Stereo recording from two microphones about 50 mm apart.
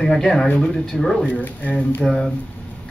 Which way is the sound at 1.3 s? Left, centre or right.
Left.